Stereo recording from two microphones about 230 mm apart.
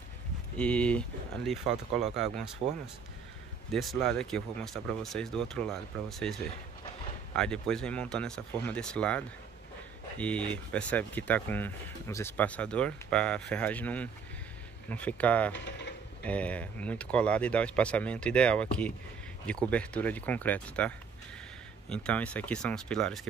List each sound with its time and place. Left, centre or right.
0.6 s speech: centre
3.7 s speech: centre
15.5 s speech: left
16.3 s speech: centre